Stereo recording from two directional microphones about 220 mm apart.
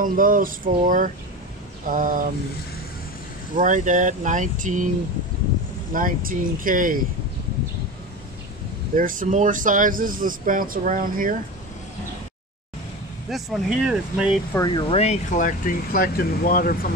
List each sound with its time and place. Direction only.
0.0 s speech: 40° right (ahead or behind)
3.5 s speech: 35° right (ahead or behind)
5.9 s speech: 40° right (ahead or behind)
8.9 s speech: 40° right (ahead or behind)
13.3 s speech: centre (ahead or behind)
14.5 s speech: 20° left (ahead or behind); by 16.9 s 40° left (ahead or behind)